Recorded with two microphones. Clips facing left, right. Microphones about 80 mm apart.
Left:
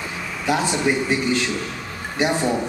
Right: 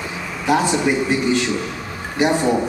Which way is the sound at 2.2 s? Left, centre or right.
Centre.